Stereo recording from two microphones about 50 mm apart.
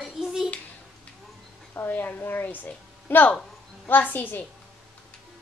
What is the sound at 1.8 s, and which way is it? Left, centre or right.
A woman's voice, left.